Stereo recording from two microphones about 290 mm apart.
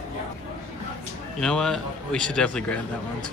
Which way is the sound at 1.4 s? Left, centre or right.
Centre.